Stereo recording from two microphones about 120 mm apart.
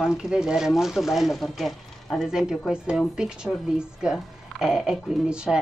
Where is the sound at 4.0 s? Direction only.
5° right (ahead or behind).